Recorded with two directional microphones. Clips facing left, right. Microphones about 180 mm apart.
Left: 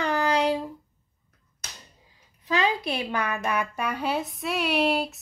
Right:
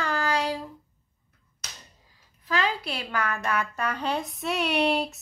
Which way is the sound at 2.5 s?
20° left (ahead or behind).